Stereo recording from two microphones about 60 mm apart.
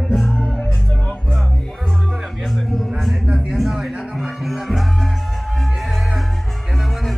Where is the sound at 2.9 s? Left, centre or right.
Centre.